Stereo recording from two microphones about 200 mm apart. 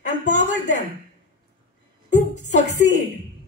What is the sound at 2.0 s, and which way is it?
Speech, 35° left (ahead or behind).